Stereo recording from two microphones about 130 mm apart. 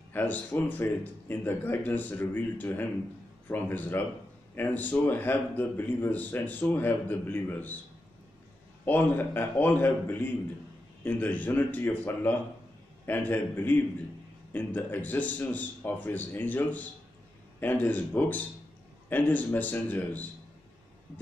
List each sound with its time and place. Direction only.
0.1 s a man's voice: 15° left (ahead or behind)
8.8 s a man's voice: 15° left (ahead or behind)